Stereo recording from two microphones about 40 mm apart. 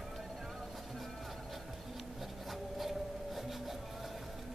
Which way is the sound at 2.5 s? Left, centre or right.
Centre.